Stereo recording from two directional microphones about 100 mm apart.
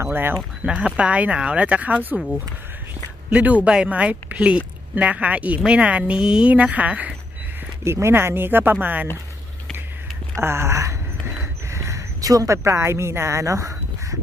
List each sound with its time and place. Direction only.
0.0 s speech: 20° right (ahead or behind)
0.7 s speech: 10° right (ahead or behind)
7.8 s speech: 25° right (ahead or behind)
10.3 s a sound: 25° right (ahead or behind)